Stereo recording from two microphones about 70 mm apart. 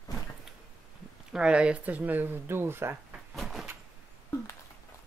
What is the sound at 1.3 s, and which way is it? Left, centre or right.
Speech, centre.